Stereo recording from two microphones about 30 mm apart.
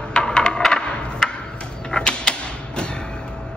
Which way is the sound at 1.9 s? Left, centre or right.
Left.